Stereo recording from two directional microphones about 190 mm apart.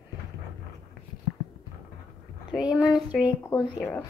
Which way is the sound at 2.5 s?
5° right (ahead or behind).